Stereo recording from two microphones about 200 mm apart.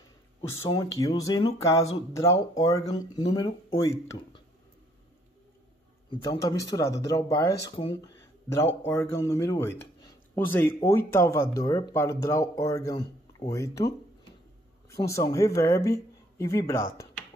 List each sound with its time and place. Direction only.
0.4 s speech: 20° left (ahead or behind)
6.4 s speech: 15° left (ahead or behind)
15.0 s speech: 15° left (ahead or behind)